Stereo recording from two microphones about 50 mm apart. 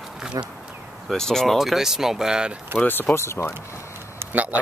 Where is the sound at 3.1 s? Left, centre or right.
Left.